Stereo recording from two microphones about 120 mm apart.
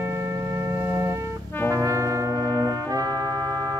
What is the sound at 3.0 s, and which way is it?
Trumpet, 20° left (ahead or behind).